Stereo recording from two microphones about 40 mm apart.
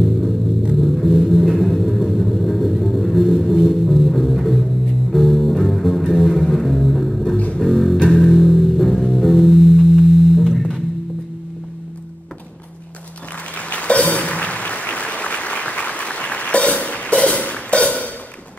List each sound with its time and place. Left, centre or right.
0.7 s music: centre
13.6 s music: left
14.0 s applause: left